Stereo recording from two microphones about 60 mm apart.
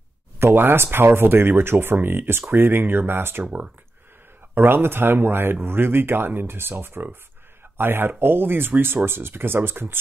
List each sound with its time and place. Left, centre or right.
0.4 s speech: right
4.6 s speech: right